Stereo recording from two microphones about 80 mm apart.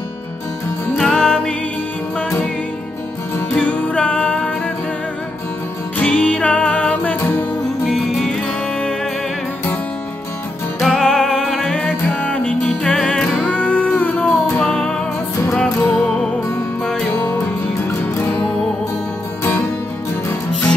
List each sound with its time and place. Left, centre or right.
0.9 s music: centre
3.5 s music: centre
5.9 s music: centre
7.2 s music: left
7.9 s music: centre
10.8 s music: centre